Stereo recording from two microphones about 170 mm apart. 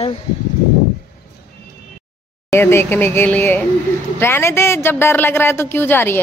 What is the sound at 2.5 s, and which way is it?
Speech, 15° left (ahead or behind).